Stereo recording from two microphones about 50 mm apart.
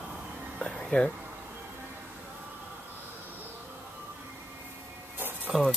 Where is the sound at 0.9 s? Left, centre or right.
Left.